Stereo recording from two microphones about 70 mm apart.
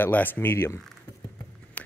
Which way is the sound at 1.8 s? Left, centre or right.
Centre.